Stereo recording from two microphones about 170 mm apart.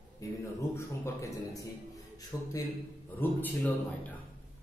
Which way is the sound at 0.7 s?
15° left (ahead or behind).